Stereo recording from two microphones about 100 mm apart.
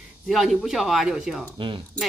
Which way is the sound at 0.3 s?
Centre (ahead or behind).